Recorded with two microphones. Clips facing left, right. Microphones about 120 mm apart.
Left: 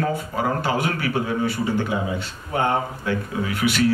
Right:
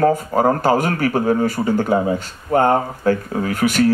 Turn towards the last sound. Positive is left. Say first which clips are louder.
# right 4 dB
turn(degrees=-45)  # may be behind; listen again after turning